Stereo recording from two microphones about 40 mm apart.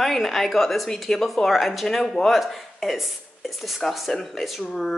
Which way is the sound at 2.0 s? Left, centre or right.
Centre.